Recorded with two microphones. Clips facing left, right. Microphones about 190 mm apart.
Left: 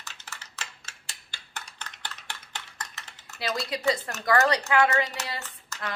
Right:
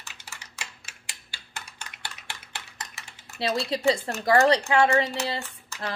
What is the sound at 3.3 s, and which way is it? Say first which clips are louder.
Speech: right 4 dB; 30° right (ahead or behind).